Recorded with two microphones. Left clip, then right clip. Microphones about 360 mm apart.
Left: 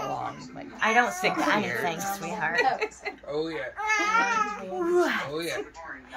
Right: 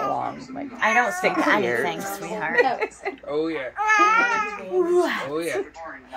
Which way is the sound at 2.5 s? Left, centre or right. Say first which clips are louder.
Right 6 dB; centre.